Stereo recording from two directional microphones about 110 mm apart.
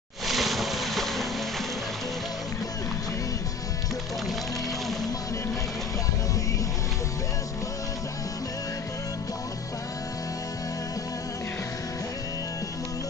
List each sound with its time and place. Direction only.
0.3 s boat: centre (ahead or behind)